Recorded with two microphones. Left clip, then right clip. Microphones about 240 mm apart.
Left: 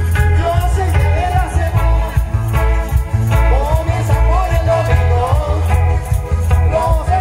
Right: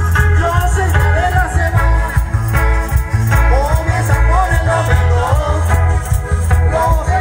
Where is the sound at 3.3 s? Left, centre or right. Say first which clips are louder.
Right 2 dB; centre.